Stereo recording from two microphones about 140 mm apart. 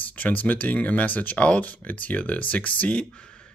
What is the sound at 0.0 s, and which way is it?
Speech, 10° left (ahead or behind).